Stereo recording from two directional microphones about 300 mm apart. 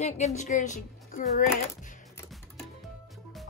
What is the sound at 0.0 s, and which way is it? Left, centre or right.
A woman's voice, left.